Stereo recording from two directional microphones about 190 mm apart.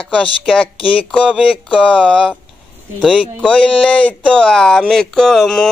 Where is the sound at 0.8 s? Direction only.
30° left (ahead or behind).